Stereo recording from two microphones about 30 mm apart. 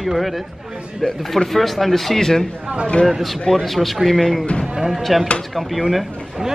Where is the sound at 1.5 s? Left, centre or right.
Centre.